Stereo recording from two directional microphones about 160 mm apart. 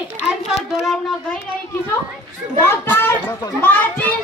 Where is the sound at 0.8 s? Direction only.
Centre (ahead or behind).